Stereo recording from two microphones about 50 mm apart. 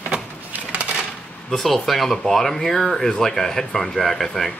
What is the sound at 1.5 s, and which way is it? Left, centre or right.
Speech, centre.